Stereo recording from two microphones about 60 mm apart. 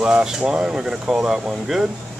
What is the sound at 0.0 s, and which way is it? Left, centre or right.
Speech, centre.